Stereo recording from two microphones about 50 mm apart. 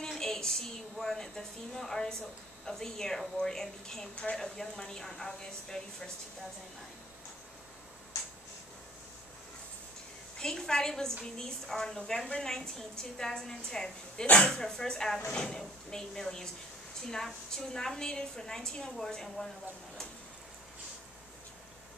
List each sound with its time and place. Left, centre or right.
0.1 s a woman's voice: centre
10.4 s a woman's voice: centre